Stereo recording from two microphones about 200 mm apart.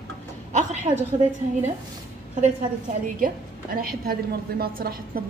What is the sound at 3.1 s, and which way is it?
A woman's voice, 45° right (ahead or behind).